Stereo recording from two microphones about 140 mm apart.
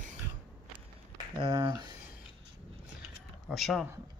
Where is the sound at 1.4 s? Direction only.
30° right (ahead or behind).